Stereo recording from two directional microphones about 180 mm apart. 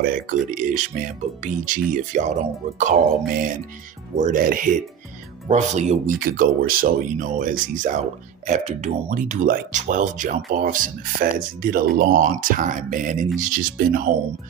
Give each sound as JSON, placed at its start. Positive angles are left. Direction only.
{"t": 0.5, "sound": "speech", "side_deg": -45}
{"t": 5.5, "sound": "speech", "side_deg": -40}